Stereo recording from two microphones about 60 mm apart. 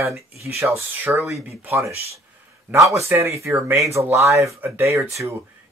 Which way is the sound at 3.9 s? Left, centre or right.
Right.